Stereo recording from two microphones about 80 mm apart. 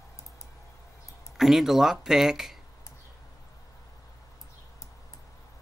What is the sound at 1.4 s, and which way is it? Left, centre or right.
Speech, centre.